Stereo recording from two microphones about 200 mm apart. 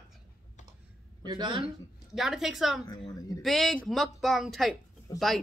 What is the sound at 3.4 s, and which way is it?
Speech, centre (ahead or behind).